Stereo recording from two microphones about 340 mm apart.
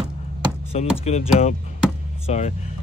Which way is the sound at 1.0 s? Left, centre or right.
Centre.